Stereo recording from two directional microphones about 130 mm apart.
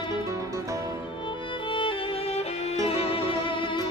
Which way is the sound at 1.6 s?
40° left (ahead or behind).